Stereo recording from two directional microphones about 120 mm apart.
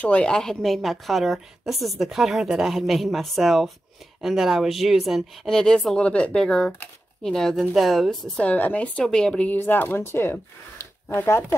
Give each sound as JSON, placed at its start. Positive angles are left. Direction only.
{"t": 0.0, "sound": "a woman's voice", "side_deg": 10}